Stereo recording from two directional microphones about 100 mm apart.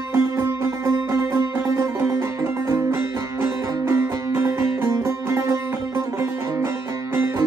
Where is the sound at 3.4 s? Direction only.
25° right (ahead or behind).